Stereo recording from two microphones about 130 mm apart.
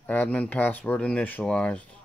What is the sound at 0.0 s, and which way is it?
Speech, 15° left (ahead or behind).